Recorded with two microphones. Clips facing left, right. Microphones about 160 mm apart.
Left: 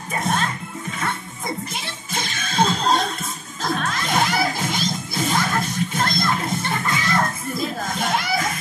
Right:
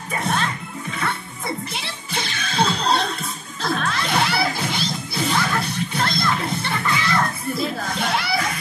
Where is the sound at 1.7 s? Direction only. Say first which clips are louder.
Even; 45° left (ahead or behind).